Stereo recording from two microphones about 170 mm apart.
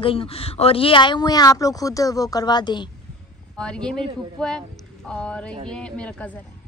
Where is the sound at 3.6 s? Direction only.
5° left (ahead or behind).